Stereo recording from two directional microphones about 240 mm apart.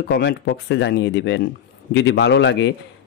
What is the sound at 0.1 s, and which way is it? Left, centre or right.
Speech, left.